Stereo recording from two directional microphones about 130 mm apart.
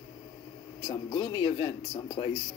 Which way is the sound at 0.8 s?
35° left (ahead or behind).